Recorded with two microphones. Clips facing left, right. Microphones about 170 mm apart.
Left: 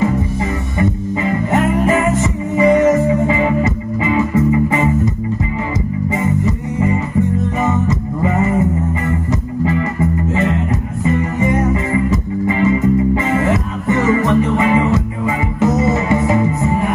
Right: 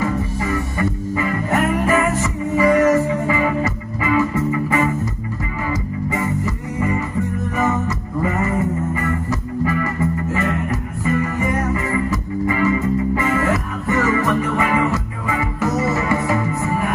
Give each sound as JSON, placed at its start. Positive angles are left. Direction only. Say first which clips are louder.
{"t": 0.0, "sound": "music", "louder": "left 4 dB", "side_deg": 20}
{"t": 6.1, "sound": "music", "louder": "left 5 dB", "side_deg": 20}
{"t": 8.2, "sound": "music", "louder": "left 4 dB", "side_deg": 20}